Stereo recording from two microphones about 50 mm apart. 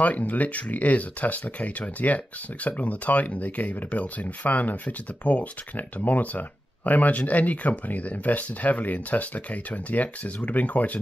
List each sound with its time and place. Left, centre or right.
0.0 s speech: left